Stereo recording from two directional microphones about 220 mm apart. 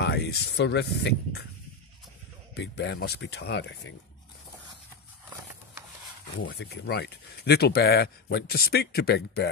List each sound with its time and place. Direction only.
0.0 s speech: 50° left (ahead or behind)
2.5 s speech: 50° left (ahead or behind)
6.4 s speech: 50° left (ahead or behind)